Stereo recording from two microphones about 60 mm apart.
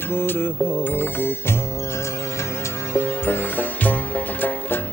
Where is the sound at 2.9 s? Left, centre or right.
Left.